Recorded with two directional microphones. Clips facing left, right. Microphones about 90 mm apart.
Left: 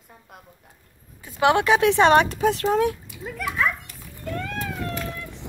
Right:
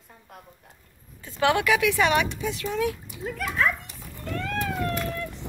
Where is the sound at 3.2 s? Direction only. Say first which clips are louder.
Left 1 dB; centre (ahead or behind).